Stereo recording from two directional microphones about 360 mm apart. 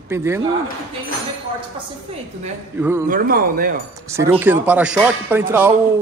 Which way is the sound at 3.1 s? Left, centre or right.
Right.